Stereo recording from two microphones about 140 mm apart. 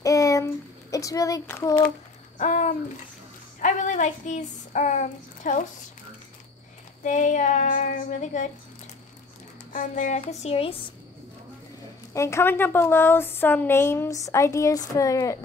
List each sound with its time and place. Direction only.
0.0 s a sound: 25° left (ahead or behind)
2.3 s a sound: 60° left (ahead or behind)
3.6 s speech: 65° left (ahead or behind)
7.0 s speech: 65° left (ahead or behind)
9.7 s speech: 65° left (ahead or behind)
10.2 s speech: 45° left (ahead or behind)
12.1 s a woman's voice: 20° left (ahead or behind)